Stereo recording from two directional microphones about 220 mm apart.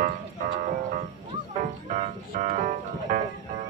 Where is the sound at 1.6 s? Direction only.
35° right (ahead or behind).